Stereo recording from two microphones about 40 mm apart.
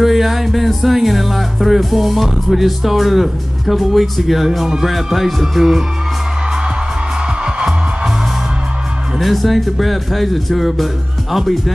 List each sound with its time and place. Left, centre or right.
0.0 s music: centre
7.4 s music: centre
9.2 s music: centre